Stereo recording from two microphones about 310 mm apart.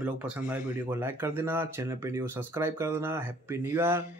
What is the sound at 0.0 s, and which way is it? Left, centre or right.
Speech, centre.